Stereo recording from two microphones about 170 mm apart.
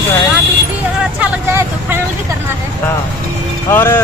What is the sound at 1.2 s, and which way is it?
Speech, 10° right (ahead or behind).